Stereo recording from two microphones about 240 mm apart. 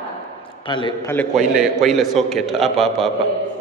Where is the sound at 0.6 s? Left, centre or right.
Centre.